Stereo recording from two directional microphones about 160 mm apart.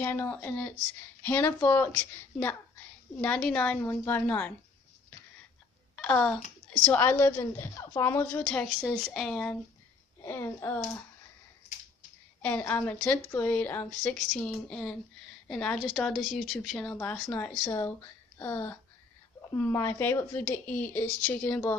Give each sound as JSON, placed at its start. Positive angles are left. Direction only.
{"t": 0.0, "sound": "a woman's voice", "side_deg": 15}
{"t": 5.9, "sound": "a child's voice", "side_deg": 5}
{"t": 12.4, "sound": "a woman's voice", "side_deg": 10}
{"t": 17.6, "sound": "a woman's voice", "side_deg": 20}